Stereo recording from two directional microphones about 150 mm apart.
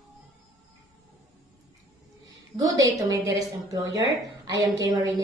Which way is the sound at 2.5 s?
25° right (ahead or behind).